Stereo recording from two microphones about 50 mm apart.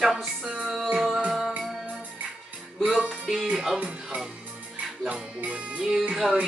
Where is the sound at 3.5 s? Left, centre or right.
Centre.